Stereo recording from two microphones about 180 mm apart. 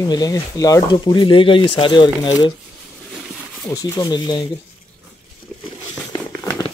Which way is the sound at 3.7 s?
20° left (ahead or behind).